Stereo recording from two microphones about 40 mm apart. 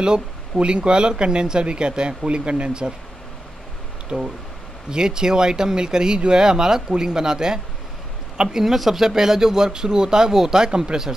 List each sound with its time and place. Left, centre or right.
0.0 s speech: right
4.1 s speech: right
8.6 s speech: centre